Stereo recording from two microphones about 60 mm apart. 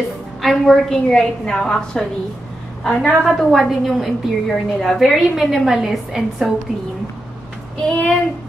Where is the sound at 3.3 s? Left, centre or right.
Centre.